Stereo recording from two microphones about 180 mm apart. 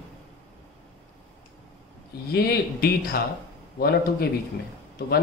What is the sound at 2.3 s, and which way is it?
Speech, 60° left (ahead or behind).